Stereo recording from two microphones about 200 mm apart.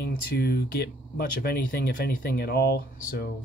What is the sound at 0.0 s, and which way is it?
Speech, 50° left (ahead or behind).